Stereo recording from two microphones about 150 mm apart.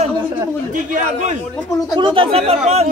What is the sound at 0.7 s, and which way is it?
Speech, 60° right (ahead or behind).